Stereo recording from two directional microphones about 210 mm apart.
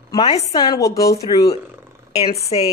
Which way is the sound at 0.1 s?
20° left (ahead or behind).